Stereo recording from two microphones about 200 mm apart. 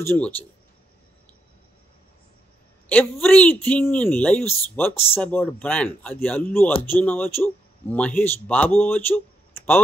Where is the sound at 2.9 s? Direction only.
5° left (ahead or behind).